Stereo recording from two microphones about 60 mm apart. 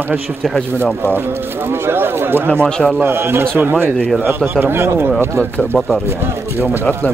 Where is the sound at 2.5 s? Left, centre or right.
Centre.